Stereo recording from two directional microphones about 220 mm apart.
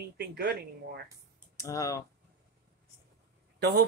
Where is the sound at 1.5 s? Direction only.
15° left (ahead or behind).